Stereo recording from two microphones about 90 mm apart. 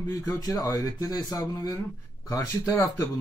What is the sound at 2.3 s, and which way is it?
Speech, 30° left (ahead or behind).